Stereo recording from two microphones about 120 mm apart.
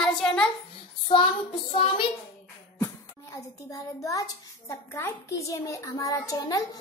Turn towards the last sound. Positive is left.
turn(degrees=30)  # may be behind; listen again after turning